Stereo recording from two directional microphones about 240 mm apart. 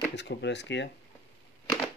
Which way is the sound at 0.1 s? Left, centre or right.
Left.